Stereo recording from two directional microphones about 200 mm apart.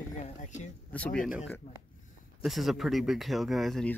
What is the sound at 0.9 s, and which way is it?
Speech, 5° left (ahead or behind).